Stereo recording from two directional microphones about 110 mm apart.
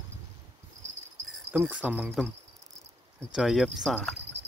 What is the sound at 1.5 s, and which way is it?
Speech, 15° right (ahead or behind).